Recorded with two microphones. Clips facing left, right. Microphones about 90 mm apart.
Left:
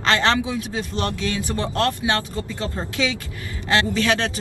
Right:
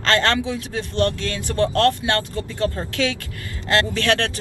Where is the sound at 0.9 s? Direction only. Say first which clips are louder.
Right 5 dB; 15° left (ahead or behind).